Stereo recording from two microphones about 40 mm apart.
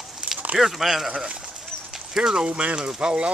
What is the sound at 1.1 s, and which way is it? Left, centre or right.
Speech, right.